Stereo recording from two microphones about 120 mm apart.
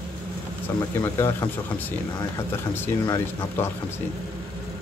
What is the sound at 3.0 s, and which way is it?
Speech, 30° left (ahead or behind).